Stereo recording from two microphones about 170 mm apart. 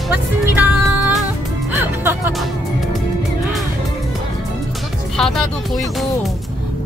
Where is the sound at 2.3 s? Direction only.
Centre (ahead or behind).